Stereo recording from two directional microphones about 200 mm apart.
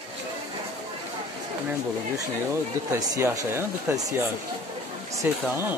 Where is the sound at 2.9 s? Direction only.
15° right (ahead or behind).